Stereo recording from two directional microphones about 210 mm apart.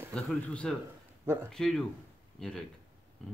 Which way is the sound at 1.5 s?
Centre (ahead or behind).